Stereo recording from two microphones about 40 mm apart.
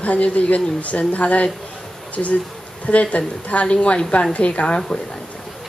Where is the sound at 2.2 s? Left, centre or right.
Left.